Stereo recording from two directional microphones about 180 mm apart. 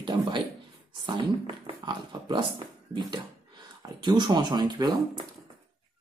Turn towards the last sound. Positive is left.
turn(degrees=-25)  # may be behind; listen again after turning